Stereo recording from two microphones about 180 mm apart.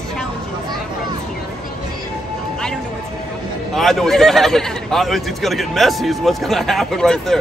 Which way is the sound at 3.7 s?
Centre (ahead or behind).